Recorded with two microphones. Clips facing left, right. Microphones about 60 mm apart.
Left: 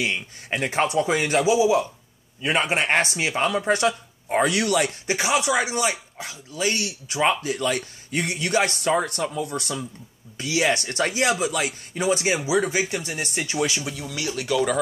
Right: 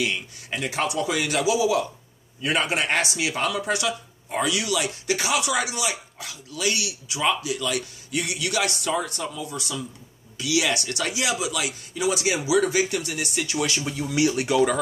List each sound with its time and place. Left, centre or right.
0.5 s speech: left
5.0 s speech: left
10.3 s speech: left
12.5 s speech: left
13.6 s speech: centre
13.9 s speech: centre